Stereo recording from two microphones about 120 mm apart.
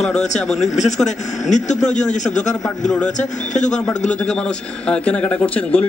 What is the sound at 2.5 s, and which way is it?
Speech, centre (ahead or behind).